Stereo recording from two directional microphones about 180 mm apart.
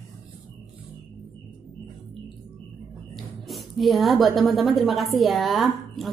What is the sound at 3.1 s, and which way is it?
A woman's voice, centre (ahead or behind).